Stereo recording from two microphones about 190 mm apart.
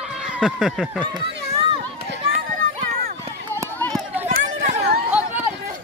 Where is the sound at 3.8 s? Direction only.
10° left (ahead or behind).